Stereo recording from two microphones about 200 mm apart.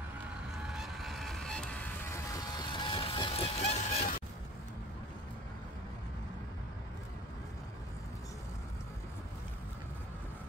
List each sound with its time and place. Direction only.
0.7 s music: centre (ahead or behind); by 4.2 s 30° left (ahead or behind)